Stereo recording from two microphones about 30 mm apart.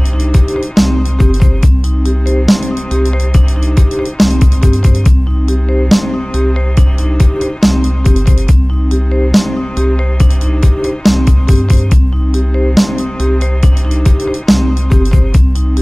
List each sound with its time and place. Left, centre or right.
0.3 s music: centre